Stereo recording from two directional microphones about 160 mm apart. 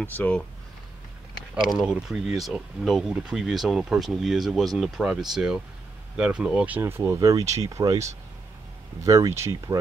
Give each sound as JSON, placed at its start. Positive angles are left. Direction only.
{"t": 0.0, "sound": "speech", "side_deg": 10}
{"t": 1.7, "sound": "speech", "side_deg": -5}